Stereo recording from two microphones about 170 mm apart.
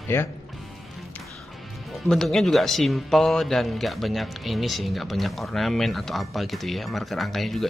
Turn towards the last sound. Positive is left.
turn(degrees=0)  # may be behind; listen again after turning